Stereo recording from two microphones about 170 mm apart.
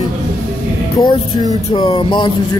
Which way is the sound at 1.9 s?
30° left (ahead or behind).